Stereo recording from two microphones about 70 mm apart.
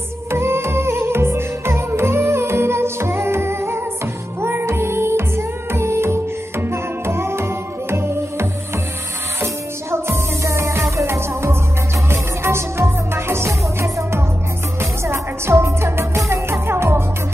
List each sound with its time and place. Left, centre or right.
0.3 s music: right